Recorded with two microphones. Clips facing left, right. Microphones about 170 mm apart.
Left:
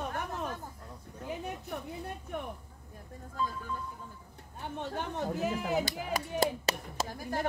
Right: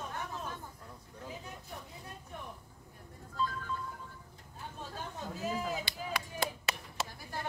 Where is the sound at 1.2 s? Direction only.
65° left (ahead or behind).